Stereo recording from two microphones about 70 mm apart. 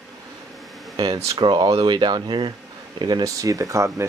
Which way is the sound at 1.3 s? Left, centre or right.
Right.